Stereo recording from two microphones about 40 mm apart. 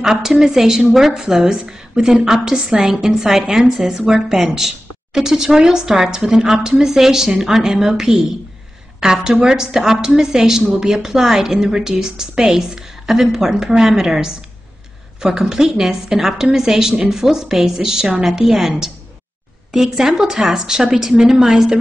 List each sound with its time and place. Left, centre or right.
0.0 s a woman's voice: centre